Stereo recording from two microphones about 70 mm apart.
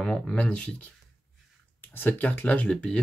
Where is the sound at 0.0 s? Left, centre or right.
Centre.